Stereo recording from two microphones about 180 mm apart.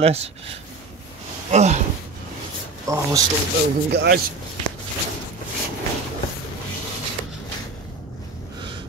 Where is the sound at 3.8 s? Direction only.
65° right (ahead or behind).